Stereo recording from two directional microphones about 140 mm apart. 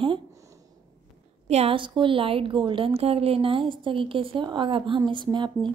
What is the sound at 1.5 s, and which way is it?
A woman's voice, 45° right (ahead or behind).